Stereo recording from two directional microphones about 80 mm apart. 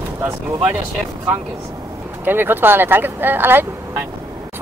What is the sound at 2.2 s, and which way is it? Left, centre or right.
Speech, right.